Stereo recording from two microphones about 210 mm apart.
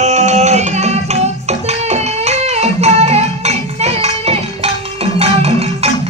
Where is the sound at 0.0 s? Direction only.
35° right (ahead or behind).